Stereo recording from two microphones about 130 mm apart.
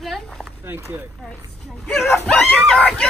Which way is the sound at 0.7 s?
20° right (ahead or behind).